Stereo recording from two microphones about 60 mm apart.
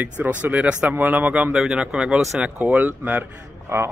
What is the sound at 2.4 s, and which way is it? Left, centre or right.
Speech, right.